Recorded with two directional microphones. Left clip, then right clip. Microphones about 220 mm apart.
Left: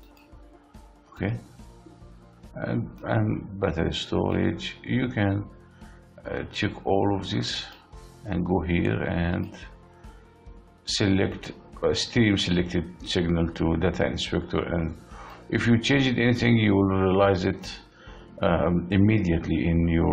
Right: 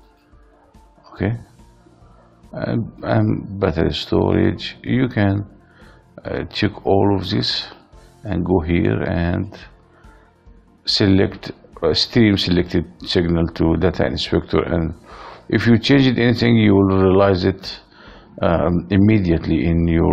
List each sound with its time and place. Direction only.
1.1 s music: 35° right (ahead or behind)
2.5 s speech: 35° right (ahead or behind)
10.9 s speech: 35° right (ahead or behind)